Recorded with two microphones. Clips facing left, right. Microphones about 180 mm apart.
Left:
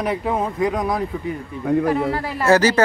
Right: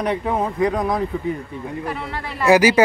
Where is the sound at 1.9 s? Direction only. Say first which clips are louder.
Left 8 dB; 40° left (ahead or behind).